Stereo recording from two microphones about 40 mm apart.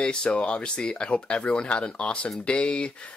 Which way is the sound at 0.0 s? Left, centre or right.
Centre.